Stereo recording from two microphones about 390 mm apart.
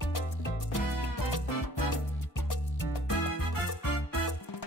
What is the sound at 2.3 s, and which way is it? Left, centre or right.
Music, left.